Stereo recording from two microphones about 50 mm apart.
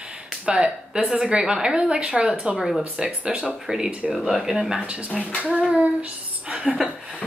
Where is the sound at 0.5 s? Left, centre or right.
Centre.